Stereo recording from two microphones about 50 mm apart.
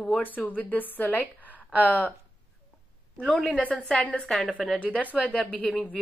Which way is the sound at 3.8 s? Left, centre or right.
Centre.